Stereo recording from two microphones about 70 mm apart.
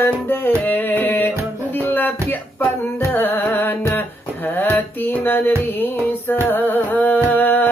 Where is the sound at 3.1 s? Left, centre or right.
Left.